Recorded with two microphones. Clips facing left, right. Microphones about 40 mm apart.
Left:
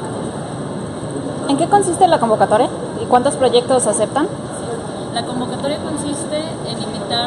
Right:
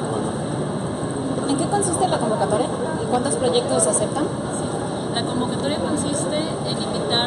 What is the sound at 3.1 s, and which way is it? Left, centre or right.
Speech, left.